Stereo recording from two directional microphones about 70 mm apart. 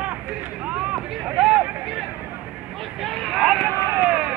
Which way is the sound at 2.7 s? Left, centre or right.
Centre.